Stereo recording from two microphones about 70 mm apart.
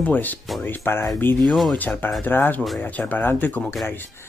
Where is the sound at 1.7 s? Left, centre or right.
Left.